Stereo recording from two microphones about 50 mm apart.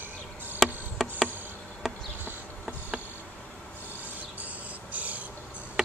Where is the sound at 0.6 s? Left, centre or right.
Centre.